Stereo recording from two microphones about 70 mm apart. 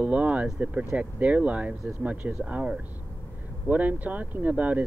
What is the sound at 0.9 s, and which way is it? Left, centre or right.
Speech, centre.